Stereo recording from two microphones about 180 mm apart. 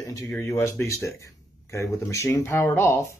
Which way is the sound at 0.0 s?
15° left (ahead or behind).